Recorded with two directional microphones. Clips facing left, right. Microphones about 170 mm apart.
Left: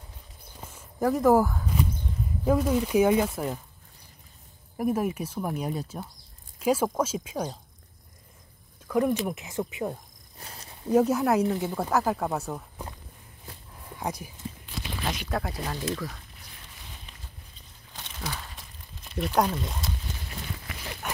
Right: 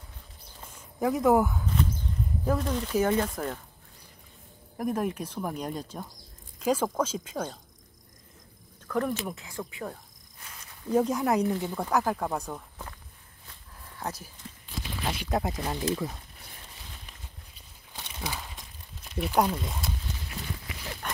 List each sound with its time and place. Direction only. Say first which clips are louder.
0.6 s walk: left 2 dB; 5° left (ahead or behind)
2.4 s speech: left 6 dB; 10° left (ahead or behind)
4.7 s speech: left 3 dB; 5° left (ahead or behind)
8.8 s speech: left 4 dB; 10° left (ahead or behind)
10.4 s cricket: left 4 dB; 35° left (ahead or behind)
10.9 s speech: left 3 dB; 10° left (ahead or behind)
11.4 s speech: left 2 dB; 15° left (ahead or behind)
13.8 s a sound: left 3 dB; 15° left (ahead or behind)
15.3 s speech: right 2 dB; 20° right (ahead or behind)
17.9 s a sound: even; 10° right (ahead or behind)
19.1 s speech: even; 5° right (ahead or behind)
21.0 s a sound: left 2 dB; 10° left (ahead or behind)